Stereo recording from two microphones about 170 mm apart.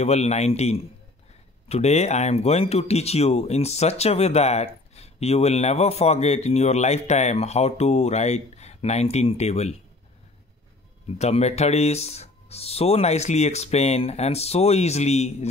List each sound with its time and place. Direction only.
0.0 s speech: 40° left (ahead or behind)
11.1 s speech: 40° left (ahead or behind)